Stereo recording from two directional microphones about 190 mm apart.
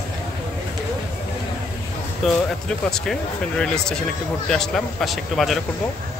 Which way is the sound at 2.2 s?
Centre (ahead or behind).